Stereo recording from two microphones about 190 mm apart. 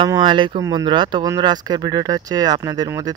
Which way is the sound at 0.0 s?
25° right (ahead or behind).